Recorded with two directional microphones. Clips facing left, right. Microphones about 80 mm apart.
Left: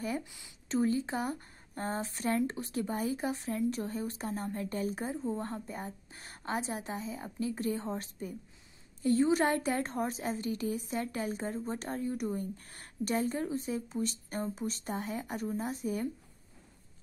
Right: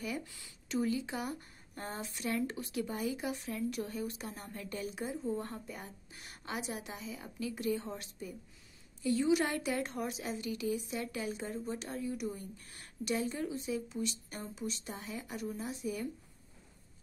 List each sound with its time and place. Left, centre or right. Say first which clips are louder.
0.2 s speech: even; centre
0.7 s a woman's voice: left 4 dB; left